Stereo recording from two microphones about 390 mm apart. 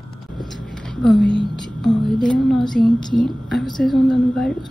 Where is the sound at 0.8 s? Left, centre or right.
Centre.